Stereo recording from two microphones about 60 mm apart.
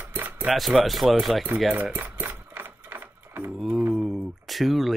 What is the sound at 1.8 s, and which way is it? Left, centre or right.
Typewriter, right.